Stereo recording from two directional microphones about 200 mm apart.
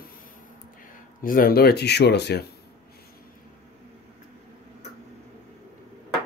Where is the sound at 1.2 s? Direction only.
45° left (ahead or behind).